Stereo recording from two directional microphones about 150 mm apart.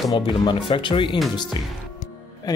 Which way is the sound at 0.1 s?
35° left (ahead or behind).